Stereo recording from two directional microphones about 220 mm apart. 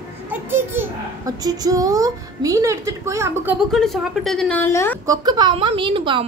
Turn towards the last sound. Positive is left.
turn(degrees=-20)  # may be behind; listen again after turning